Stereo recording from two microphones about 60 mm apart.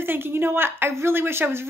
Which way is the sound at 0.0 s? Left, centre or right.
Right.